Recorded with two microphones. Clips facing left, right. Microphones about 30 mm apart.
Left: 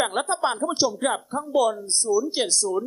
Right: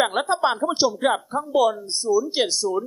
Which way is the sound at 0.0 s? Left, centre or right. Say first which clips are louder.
Right 3 dB; centre.